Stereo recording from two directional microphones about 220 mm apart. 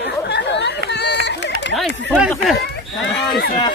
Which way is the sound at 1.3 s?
50° left (ahead or behind).